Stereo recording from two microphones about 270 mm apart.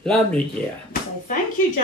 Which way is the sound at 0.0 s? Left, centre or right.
Centre.